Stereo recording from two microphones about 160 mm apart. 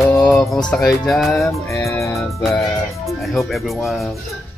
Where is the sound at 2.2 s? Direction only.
Centre (ahead or behind).